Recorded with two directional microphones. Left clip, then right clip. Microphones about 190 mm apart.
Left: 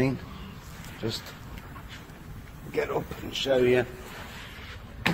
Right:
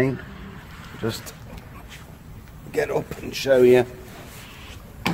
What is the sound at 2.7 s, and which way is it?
Speech, 25° right (ahead or behind).